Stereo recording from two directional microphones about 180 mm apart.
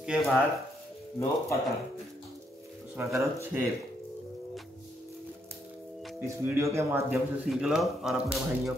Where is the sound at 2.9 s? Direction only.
15° right (ahead or behind).